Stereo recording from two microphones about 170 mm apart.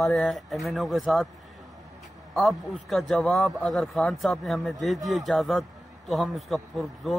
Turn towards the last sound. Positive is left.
turn(degrees=0)  # may be behind; listen again after turning